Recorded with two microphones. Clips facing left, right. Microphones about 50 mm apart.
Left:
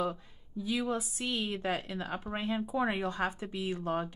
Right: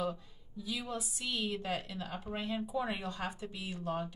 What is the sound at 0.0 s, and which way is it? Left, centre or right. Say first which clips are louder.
A woman's voice: left 3 dB; left.